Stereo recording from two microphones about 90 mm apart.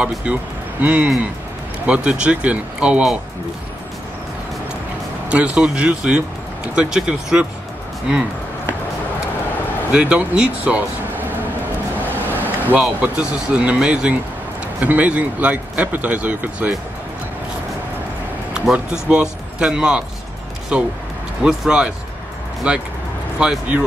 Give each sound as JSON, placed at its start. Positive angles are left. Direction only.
{"t": 0.8, "sound": "speech", "side_deg": -15}
{"t": 5.3, "sound": "speech", "side_deg": -15}
{"t": 9.9, "sound": "speech", "side_deg": -10}
{"t": 12.1, "sound": "vehicle", "side_deg": -20}
{"t": 13.0, "sound": "speech", "side_deg": -15}
{"t": 18.5, "sound": "speech", "side_deg": -10}
{"t": 21.5, "sound": "speech", "side_deg": -10}